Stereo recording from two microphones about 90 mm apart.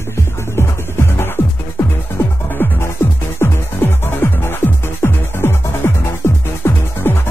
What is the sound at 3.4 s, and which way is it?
Music, 30° left (ahead or behind).